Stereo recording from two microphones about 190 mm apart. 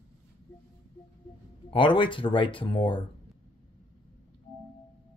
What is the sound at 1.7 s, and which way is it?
Speech, 25° left (ahead or behind).